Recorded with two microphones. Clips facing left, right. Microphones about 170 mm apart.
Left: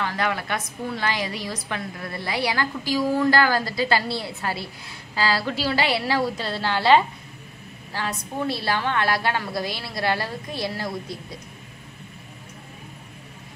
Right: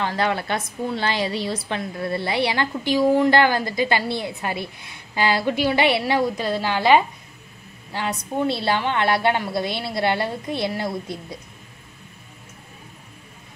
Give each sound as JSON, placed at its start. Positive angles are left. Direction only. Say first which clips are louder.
{"t": 0.0, "sound": "a woman's voice", "louder": "right 3 dB", "side_deg": -30}